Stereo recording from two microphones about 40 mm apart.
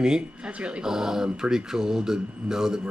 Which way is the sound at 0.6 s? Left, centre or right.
Right.